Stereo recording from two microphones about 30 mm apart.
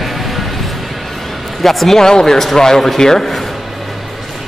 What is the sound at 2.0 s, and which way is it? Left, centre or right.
Speech, centre.